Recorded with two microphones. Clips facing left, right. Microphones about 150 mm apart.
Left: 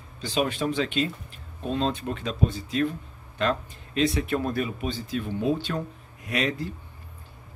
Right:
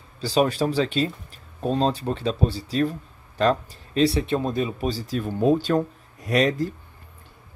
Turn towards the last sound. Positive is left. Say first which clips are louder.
# right 7 dB
turn(degrees=-40)  # may be behind; listen again after turning